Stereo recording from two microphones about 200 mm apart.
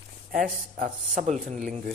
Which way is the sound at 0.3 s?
50° right (ahead or behind).